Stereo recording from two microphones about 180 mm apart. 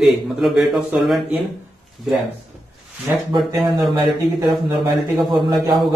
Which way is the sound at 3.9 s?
25° right (ahead or behind).